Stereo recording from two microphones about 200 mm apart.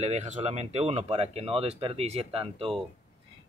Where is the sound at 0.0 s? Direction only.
35° right (ahead or behind).